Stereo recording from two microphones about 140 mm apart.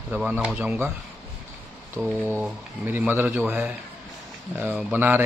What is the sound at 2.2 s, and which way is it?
A man's voice, 15° right (ahead or behind).